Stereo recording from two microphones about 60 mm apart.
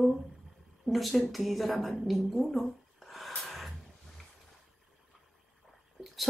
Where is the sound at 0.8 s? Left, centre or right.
Centre.